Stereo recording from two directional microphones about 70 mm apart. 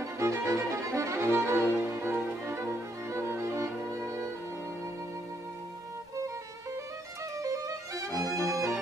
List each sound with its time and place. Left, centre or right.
0.0 s music: right
1.8 s violin: right
7.4 s music: right
8.3 s music: centre